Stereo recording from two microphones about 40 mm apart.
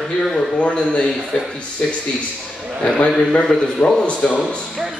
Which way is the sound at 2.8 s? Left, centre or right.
Left.